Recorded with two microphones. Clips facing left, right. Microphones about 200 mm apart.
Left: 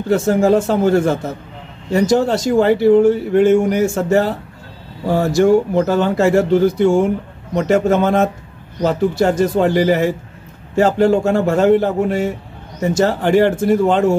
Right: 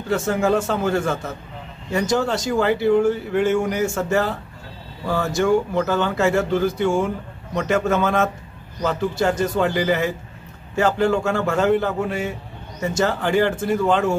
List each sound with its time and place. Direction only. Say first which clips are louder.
0.1 s speech: left 6 dB; 30° left (ahead or behind)